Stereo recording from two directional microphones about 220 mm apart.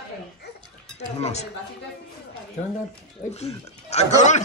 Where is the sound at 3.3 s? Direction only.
30° left (ahead or behind).